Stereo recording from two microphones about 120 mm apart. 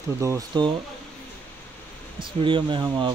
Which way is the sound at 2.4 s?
45° right (ahead or behind).